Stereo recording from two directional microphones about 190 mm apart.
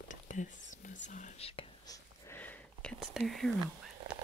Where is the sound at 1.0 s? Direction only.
40° left (ahead or behind).